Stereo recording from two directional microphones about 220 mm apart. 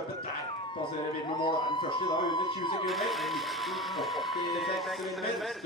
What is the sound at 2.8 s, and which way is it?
Speech, centre (ahead or behind).